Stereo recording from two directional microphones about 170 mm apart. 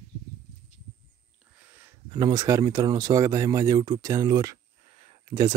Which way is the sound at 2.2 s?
20° right (ahead or behind).